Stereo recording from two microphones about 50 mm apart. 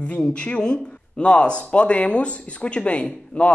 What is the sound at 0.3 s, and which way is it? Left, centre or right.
Speech, left.